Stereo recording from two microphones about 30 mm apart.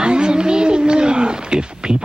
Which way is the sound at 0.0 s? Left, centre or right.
Right.